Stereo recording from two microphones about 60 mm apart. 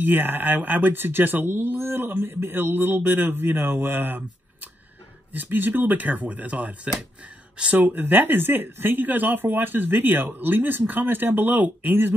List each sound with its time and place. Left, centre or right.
0.0 s speech: right
7.8 s speech: right